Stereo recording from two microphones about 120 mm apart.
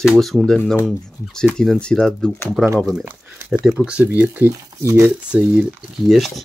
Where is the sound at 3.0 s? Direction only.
15° right (ahead or behind).